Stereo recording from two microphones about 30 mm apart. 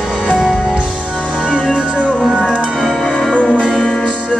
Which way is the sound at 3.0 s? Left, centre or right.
Centre.